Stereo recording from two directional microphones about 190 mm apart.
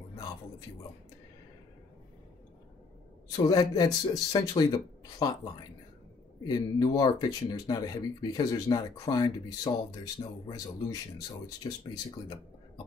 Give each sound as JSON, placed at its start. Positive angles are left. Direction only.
{"t": 3.4, "sound": "speech", "side_deg": 20}